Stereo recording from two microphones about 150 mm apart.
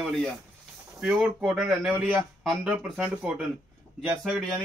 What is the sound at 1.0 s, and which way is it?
Speech, 5° right (ahead or behind).